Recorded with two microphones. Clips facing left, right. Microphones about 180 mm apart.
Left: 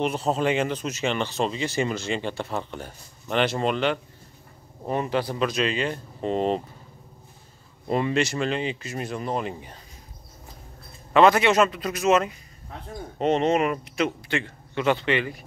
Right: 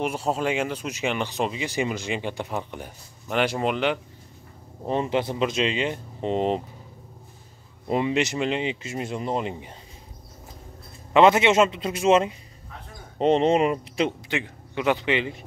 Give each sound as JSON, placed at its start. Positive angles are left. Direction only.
{"t": 0.0, "sound": "speech", "side_deg": -10}
{"t": 7.9, "sound": "speech", "side_deg": -15}
{"t": 11.1, "sound": "speech", "side_deg": -20}
{"t": 14.3, "sound": "speech", "side_deg": -15}